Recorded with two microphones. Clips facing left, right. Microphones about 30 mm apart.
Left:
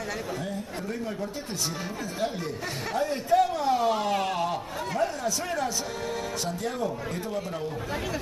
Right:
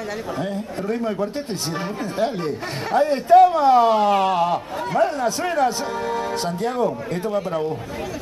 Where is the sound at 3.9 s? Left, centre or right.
Right.